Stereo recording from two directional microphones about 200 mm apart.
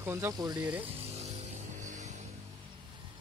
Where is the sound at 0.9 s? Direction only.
30° right (ahead or behind).